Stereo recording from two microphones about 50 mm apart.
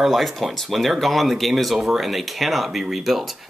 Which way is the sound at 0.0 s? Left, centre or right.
Centre.